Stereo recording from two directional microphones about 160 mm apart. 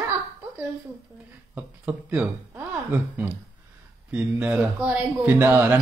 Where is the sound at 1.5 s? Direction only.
10° right (ahead or behind).